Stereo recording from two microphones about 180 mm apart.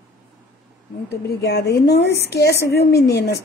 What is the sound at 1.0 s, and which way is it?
A woman's voice, 65° left (ahead or behind).